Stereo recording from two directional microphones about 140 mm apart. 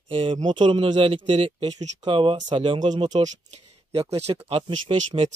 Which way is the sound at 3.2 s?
45° right (ahead or behind).